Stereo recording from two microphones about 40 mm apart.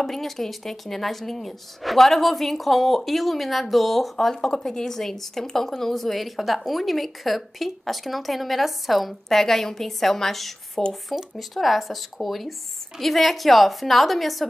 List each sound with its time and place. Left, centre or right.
0.0 s a woman's voice: centre
10.8 s speech: centre
11.3 s a woman's voice: centre